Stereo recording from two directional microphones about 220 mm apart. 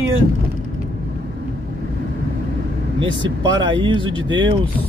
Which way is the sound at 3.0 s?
20° right (ahead or behind).